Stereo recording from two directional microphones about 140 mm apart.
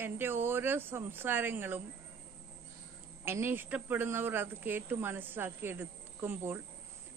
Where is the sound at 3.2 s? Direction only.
15° right (ahead or behind).